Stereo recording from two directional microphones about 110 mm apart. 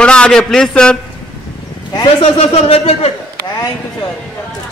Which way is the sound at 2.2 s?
65° left (ahead or behind).